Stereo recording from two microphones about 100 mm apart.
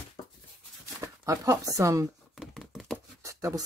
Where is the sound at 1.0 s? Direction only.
35° right (ahead or behind).